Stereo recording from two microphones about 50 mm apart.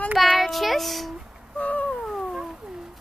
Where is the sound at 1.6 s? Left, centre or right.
Left.